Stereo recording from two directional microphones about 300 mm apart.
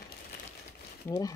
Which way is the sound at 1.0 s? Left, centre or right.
Centre.